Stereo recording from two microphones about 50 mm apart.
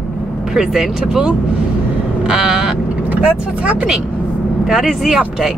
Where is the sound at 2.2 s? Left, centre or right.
Centre.